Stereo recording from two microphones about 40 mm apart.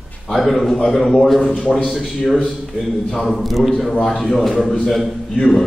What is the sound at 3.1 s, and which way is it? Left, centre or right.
A man's voice, centre.